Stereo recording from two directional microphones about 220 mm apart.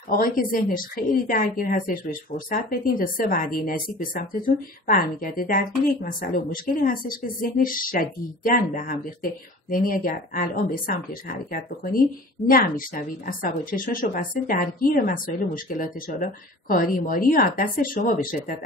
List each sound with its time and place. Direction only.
0.1 s speech: 40° left (ahead or behind)